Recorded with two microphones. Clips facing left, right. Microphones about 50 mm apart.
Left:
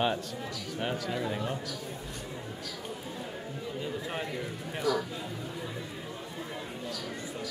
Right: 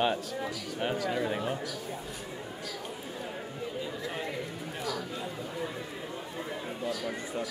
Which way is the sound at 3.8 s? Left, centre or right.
Centre.